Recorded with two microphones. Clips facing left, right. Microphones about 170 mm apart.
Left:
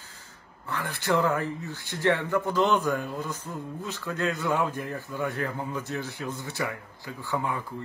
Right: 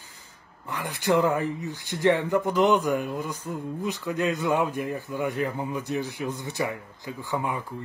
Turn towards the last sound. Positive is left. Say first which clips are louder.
# right 1 dB
turn(degrees=-15)  # may be behind; listen again after turning